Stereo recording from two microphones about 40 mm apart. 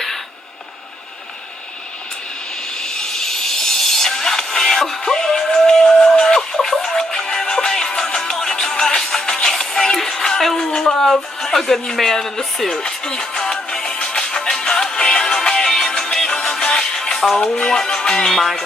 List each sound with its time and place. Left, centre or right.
2.8 s music: centre